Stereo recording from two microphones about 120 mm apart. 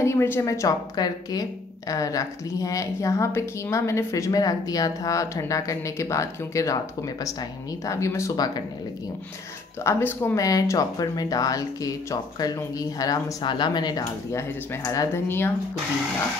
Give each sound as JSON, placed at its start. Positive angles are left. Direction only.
{"t": 0.0, "sound": "speech", "side_deg": 20}
{"t": 7.8, "sound": "speech", "side_deg": 25}
{"t": 9.8, "sound": "speech", "side_deg": 20}